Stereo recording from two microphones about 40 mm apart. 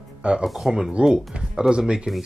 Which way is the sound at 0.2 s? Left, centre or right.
Right.